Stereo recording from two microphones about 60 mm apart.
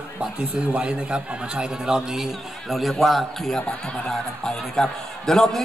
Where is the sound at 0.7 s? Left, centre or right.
Centre.